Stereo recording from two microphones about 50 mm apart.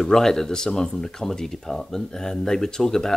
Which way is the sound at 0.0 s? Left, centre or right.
Centre.